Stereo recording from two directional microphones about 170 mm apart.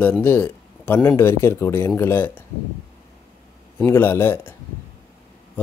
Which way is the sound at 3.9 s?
15° left (ahead or behind).